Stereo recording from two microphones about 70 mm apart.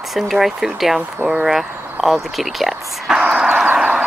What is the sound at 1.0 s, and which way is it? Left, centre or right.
Speech, right.